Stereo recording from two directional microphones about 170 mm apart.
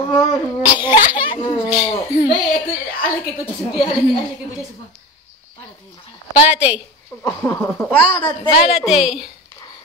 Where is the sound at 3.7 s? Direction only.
35° left (ahead or behind).